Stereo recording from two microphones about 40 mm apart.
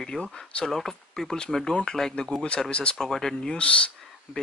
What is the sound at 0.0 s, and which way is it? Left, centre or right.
Speech, centre.